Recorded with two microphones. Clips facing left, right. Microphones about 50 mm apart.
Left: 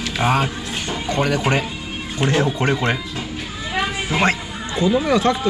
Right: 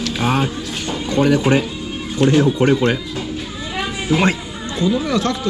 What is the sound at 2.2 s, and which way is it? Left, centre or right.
Speech, left.